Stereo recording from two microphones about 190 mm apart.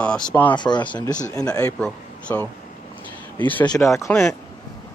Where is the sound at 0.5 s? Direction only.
25° left (ahead or behind).